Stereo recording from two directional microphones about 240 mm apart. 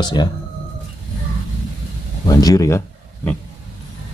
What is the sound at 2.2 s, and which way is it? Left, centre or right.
Speech, centre.